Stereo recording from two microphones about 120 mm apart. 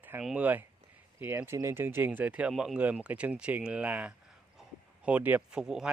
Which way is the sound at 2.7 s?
15° right (ahead or behind).